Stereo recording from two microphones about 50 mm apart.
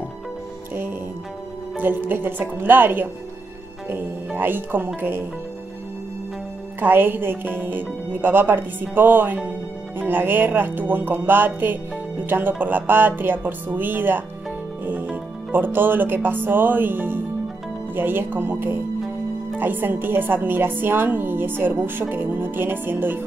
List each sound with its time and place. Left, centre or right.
1.8 s speech: right
4.4 s a woman's voice: right
6.8 s a woman's voice: right
15.5 s a woman's voice: right